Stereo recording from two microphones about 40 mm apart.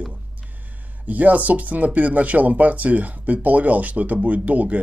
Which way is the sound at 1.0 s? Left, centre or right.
Right.